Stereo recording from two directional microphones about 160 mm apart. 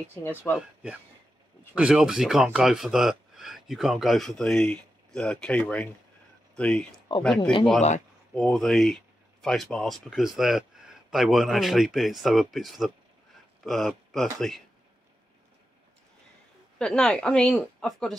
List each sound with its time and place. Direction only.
0.5 s speech: 10° left (ahead or behind)
1.8 s speech: 5° right (ahead or behind)
16.7 s speech: 5° left (ahead or behind)